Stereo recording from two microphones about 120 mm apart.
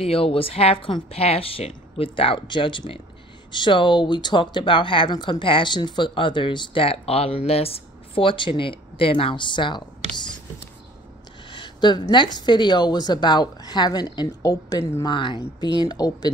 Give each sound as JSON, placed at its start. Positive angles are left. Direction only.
{"t": 0.0, "sound": "speech", "side_deg": 50}
{"t": 11.5, "sound": "a woman's voice", "side_deg": 40}
{"t": 15.0, "sound": "a woman's voice", "side_deg": 40}